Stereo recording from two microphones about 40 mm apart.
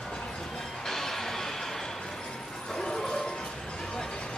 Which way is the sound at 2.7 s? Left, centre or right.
Centre.